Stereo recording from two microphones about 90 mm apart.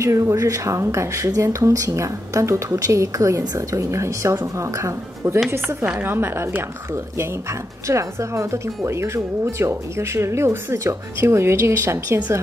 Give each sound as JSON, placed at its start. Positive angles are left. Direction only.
{"t": 0.0, "sound": "a woman's voice", "side_deg": -35}